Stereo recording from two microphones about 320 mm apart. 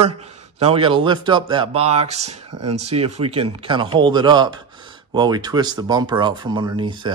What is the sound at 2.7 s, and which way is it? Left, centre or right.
Speech, centre.